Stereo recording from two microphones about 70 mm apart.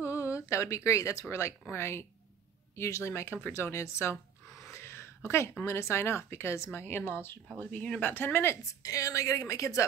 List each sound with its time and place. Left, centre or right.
0.0 s a sound: left
1.7 s speech: left
4.6 s a sound: left
5.7 s speech: left
7.6 s speech: left
8.8 s a woman's voice: left